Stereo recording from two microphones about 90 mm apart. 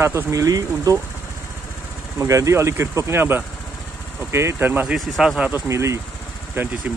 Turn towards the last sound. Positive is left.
turn(degrees=-30)  # may be behind; listen again after turning